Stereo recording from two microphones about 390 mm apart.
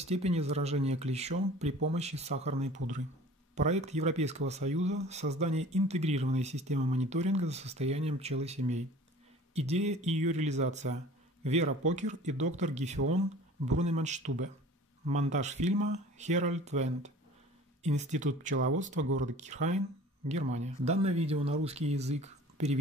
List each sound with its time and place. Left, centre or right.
0.0 s speech: centre
19.3 s speech: centre